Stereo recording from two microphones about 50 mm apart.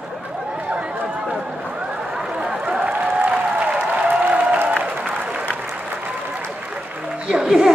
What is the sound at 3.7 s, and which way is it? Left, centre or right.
Applause, right.